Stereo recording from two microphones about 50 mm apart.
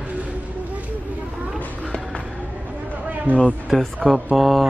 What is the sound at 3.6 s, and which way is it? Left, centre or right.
Speech, centre.